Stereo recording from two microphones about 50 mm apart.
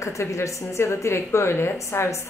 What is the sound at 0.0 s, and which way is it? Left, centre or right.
A woman's voice, left.